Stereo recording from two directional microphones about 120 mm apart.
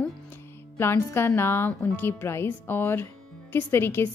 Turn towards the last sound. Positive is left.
turn(degrees=20)  # may be behind; listen again after turning